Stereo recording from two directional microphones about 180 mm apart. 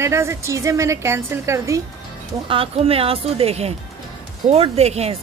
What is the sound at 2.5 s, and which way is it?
A woman's voice, 30° right (ahead or behind).